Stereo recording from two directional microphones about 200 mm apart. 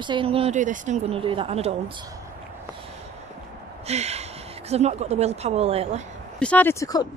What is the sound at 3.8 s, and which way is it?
Speech, 30° right (ahead or behind).